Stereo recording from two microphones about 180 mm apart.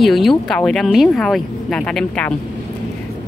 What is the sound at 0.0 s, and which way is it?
Speech, centre (ahead or behind).